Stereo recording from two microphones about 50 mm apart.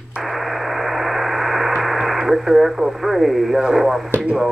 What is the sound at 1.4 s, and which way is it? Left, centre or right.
Speech, centre.